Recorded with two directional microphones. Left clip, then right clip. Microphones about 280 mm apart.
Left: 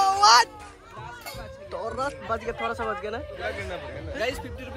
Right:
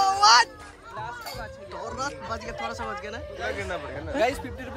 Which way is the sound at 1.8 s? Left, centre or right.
Centre.